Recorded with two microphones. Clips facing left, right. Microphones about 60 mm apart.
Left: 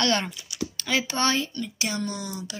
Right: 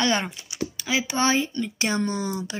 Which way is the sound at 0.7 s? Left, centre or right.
Centre.